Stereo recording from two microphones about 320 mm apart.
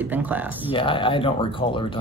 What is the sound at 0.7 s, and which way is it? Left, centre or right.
Speech, centre.